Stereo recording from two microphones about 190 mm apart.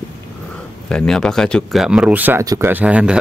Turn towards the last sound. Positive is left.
turn(degrees=-5)  # may be behind; listen again after turning